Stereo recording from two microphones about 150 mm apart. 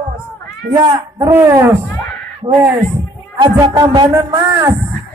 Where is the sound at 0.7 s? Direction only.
25° right (ahead or behind).